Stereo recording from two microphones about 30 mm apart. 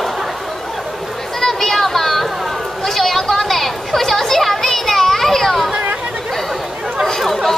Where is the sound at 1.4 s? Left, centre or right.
Centre.